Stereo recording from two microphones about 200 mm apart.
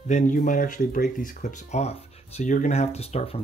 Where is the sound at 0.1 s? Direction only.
40° left (ahead or behind).